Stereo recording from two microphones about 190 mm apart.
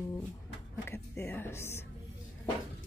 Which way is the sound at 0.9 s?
10° left (ahead or behind).